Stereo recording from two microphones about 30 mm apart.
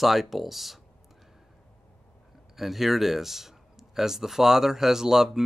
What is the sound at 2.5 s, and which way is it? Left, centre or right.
Speech, centre.